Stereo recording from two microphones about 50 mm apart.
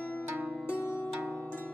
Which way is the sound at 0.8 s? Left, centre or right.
Left.